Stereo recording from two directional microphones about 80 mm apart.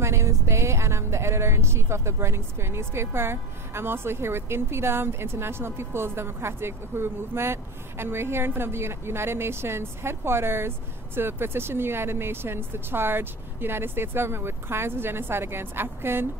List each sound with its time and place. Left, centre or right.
0.0 s speech: right